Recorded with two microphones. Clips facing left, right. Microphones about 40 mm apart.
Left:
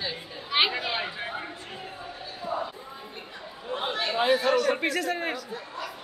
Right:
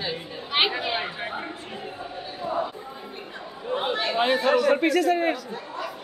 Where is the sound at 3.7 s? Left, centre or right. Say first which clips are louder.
Right 3 dB; centre.